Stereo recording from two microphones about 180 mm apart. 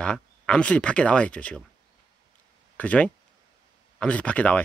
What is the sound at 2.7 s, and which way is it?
Speech, 5° left (ahead or behind).